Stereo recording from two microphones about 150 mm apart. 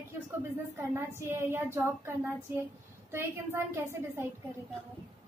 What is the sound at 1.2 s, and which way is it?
Speech, 15° right (ahead or behind).